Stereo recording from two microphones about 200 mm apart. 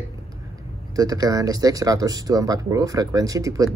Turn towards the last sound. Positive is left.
turn(degrees=-15)  # may be behind; listen again after turning